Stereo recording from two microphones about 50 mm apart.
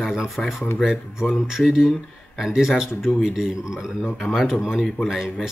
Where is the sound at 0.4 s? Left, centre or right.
Centre.